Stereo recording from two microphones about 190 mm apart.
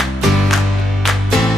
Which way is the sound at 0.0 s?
Centre (ahead or behind).